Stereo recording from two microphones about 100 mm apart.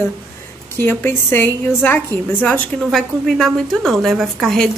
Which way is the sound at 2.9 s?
Centre (ahead or behind).